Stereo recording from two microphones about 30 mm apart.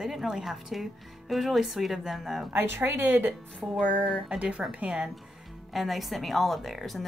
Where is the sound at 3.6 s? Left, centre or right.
Right.